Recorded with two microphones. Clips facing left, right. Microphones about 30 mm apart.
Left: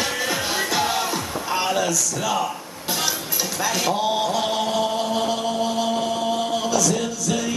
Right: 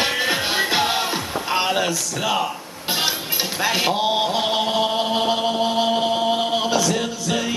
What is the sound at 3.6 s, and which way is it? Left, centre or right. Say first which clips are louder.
Chant: right 2 dB; right.